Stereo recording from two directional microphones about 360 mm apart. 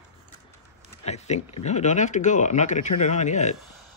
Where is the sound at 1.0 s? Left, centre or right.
Centre.